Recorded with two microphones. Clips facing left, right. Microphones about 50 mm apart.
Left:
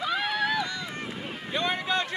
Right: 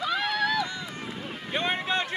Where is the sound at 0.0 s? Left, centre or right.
Centre.